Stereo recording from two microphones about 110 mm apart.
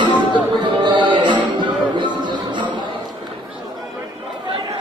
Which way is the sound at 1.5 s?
45° right (ahead or behind).